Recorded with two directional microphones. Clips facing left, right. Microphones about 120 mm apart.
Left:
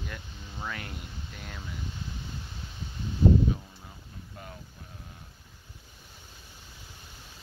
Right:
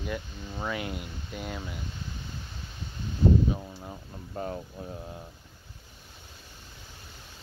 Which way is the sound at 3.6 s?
40° right (ahead or behind).